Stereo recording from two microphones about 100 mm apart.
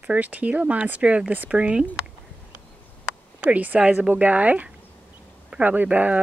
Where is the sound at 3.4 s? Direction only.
15° right (ahead or behind).